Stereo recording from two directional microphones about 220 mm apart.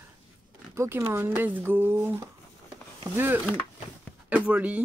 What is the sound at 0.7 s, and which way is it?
Speech, 10° right (ahead or behind).